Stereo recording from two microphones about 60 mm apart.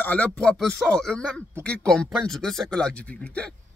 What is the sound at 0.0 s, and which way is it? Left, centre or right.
Speech, left.